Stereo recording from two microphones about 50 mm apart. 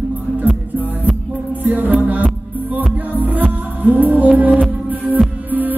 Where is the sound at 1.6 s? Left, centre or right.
Right.